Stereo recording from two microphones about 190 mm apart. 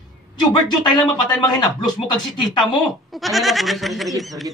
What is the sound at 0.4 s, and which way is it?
Speech, 20° left (ahead or behind).